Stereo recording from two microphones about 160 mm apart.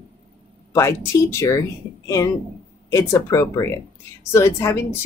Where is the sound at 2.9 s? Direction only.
20° left (ahead or behind).